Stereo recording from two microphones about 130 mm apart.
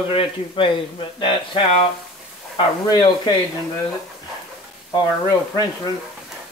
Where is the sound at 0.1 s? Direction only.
45° left (ahead or behind).